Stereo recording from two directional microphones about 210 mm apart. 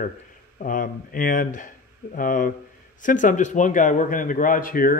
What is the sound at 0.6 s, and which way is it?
Speech, 40° left (ahead or behind).